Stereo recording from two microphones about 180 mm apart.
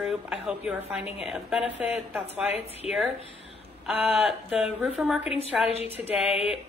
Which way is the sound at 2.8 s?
35° left (ahead or behind).